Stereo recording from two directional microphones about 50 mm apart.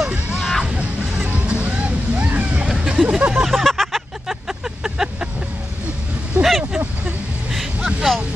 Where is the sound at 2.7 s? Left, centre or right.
Centre.